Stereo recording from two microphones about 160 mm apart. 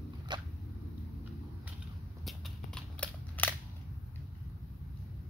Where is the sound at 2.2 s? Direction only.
Centre (ahead or behind).